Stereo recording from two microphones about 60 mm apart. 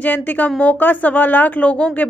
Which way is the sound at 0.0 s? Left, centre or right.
Left.